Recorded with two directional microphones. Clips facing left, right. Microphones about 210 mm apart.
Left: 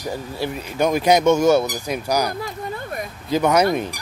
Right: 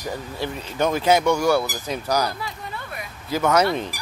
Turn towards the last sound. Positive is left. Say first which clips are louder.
# left 2 dB
turn(degrees=15)  # may be behind; listen again after turning